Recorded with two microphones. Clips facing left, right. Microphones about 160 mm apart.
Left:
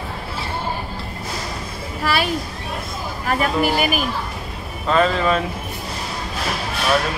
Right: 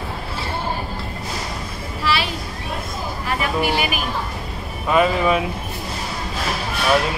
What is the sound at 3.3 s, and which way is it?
Speech, 45° left (ahead or behind).